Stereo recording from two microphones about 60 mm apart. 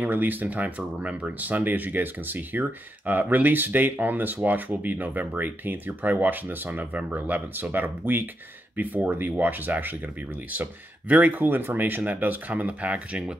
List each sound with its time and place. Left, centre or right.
0.0 s speech: right